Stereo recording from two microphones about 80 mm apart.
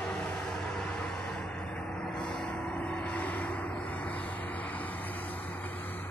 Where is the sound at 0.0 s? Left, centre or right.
Centre.